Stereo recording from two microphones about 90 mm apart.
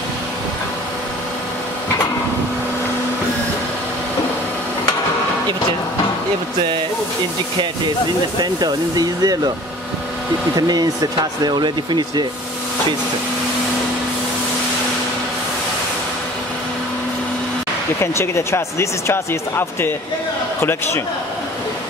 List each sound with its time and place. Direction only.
8.4 s speech: 50° right (ahead or behind)
10.5 s speech: 45° right (ahead or behind)
18.0 s speech: 30° left (ahead or behind)